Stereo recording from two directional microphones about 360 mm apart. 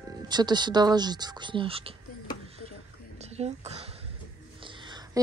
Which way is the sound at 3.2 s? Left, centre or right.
Centre.